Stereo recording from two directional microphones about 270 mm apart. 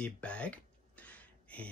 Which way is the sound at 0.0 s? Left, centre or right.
Centre.